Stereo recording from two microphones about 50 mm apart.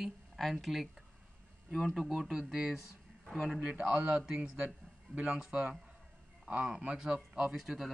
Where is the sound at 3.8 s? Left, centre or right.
Right.